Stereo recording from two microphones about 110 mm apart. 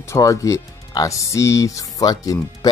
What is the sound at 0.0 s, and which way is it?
Speech, 25° left (ahead or behind).